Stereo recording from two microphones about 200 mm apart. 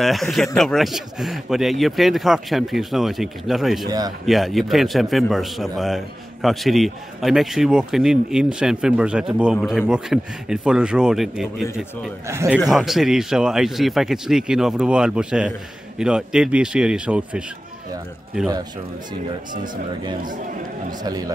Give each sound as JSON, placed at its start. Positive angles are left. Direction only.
{"t": 0.0, "sound": "a man's voice", "side_deg": 0}
{"t": 3.8, "sound": "a man's voice", "side_deg": -20}
{"t": 4.3, "sound": "a man's voice", "side_deg": 0}
{"t": 12.3, "sound": "a man's voice", "side_deg": -15}
{"t": 12.5, "sound": "a man's voice", "side_deg": 0}